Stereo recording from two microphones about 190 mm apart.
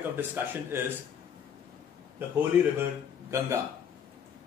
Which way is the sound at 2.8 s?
15° right (ahead or behind).